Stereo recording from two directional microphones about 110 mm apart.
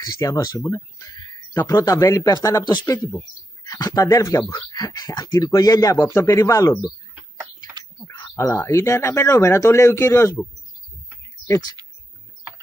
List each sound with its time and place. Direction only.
0.0 s a man's voice: 30° left (ahead or behind)
2.8 s a man's voice: 20° left (ahead or behind)
3.6 s a man's voice: 30° left (ahead or behind)
8.0 s a sound: 20° left (ahead or behind)
8.5 s a man's voice: 25° left (ahead or behind)
11.4 s speech: 30° left (ahead or behind)